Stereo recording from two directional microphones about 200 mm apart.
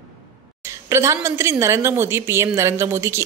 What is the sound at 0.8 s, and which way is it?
A woman's voice, 15° right (ahead or behind).